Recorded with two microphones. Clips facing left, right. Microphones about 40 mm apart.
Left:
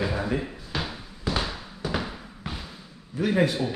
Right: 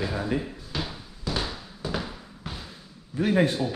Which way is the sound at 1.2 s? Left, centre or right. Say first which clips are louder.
Left 2 dB; left.